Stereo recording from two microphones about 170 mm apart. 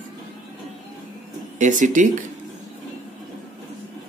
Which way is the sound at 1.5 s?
45° right (ahead or behind).